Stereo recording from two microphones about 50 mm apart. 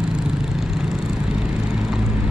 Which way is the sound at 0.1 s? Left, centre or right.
Centre.